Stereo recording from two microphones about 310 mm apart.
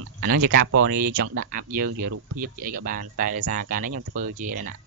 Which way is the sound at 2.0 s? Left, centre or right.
Right.